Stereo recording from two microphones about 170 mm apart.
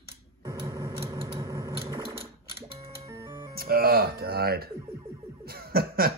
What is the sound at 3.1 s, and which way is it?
Music, 15° right (ahead or behind).